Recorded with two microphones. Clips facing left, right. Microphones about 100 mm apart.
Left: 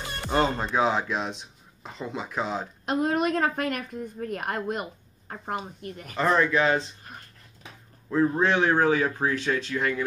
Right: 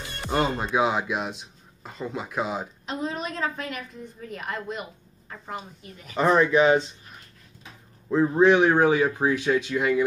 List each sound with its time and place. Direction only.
0.4 s speech: 10° right (ahead or behind)
2.8 s a woman's voice: 55° left (ahead or behind)
6.1 s speech: 15° right (ahead or behind)
8.1 s speech: 15° right (ahead or behind)